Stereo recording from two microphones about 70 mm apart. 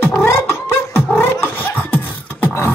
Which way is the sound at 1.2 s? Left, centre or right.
Left.